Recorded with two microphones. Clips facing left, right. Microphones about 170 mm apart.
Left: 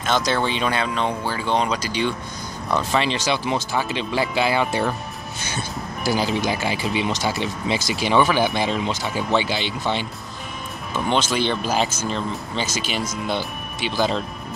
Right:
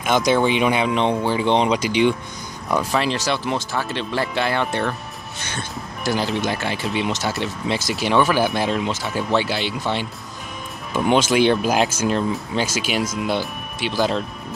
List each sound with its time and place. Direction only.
0.0 s speech: 15° right (ahead or behind)
2.7 s speech: centre (ahead or behind)